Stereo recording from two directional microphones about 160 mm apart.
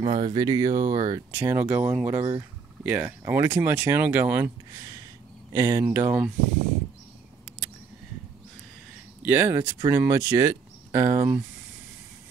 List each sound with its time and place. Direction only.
0.0 s speech: 35° right (ahead or behind); by 4.5 s 15° right (ahead or behind)
5.5 s speech: 20° right (ahead or behind)
9.2 s speech: 15° right (ahead or behind)